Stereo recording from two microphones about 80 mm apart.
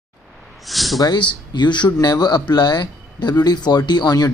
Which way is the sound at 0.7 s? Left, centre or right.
Centre.